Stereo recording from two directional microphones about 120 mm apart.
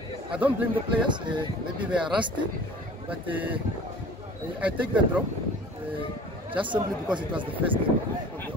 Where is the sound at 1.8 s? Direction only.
10° right (ahead or behind).